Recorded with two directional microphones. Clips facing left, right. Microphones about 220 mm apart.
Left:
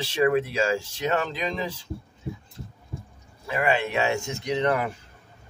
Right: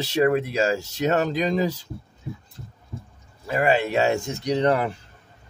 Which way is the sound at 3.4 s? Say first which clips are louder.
Right 3 dB; 40° right (ahead or behind).